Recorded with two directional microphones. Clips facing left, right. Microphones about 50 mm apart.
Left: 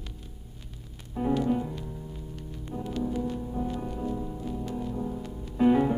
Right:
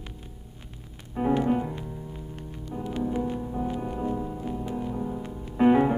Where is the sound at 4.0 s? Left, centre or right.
Right.